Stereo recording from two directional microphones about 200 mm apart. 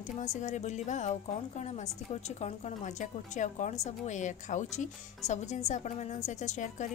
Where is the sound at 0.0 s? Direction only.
35° left (ahead or behind).